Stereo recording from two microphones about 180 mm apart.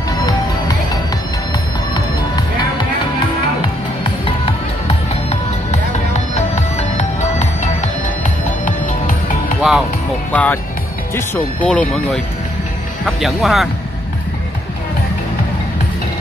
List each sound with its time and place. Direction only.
4.0 s music: 35° left (ahead or behind)
6.8 s music: 40° left (ahead or behind)
9.6 s music: centre (ahead or behind)
10.3 s speech: 10° left (ahead or behind)